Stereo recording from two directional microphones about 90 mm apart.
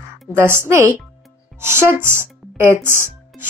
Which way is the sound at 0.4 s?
25° right (ahead or behind).